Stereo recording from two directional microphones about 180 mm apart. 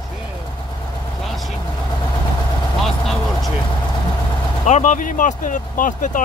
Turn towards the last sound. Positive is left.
turn(degrees=45)  # may be behind; listen again after turning